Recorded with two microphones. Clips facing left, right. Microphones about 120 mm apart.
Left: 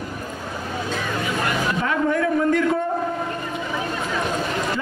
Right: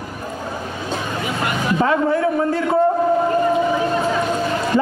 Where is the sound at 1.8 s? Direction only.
30° right (ahead or behind).